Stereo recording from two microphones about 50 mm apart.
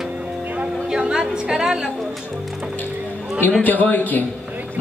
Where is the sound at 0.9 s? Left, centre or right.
Centre.